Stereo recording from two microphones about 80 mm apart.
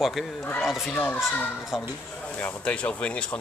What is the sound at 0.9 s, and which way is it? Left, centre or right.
Speech, centre.